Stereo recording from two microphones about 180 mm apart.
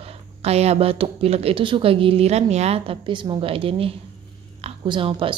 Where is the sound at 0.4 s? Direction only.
35° right (ahead or behind).